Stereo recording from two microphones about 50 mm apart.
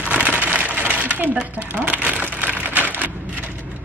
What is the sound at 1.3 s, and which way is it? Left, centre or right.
Typewriter, right.